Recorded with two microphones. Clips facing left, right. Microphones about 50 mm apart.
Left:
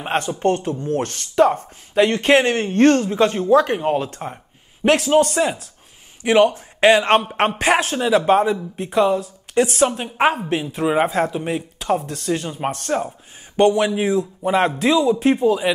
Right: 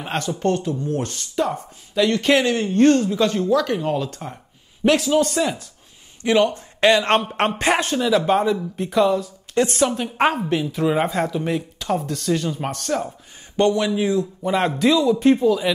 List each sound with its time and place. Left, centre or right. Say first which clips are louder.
0.0 s speech: left 3 dB; left
3.2 s speech: left 4 dB; left
4.8 s speech: left 2 dB; left
6.5 s speech: left 2 dB; centre
14.4 s a man's voice: left 1 dB; centre